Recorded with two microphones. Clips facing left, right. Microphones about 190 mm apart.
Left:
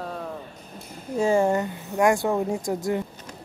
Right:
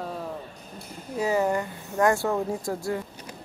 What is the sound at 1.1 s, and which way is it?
Speech, 25° left (ahead or behind).